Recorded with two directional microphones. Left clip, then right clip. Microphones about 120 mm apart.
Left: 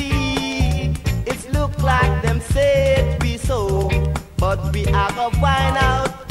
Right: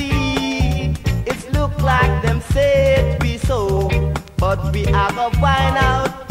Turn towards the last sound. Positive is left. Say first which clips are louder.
# right 1 dB
turn(degrees=-20)  # may be behind; listen again after turning